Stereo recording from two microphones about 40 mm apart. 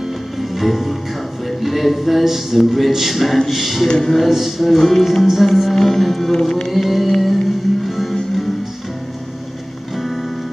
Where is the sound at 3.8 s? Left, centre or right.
Centre.